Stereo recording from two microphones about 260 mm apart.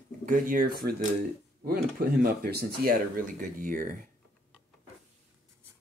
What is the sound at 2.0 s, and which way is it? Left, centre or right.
Speech, right.